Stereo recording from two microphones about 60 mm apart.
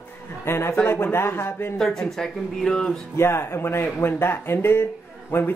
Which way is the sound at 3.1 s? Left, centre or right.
Left.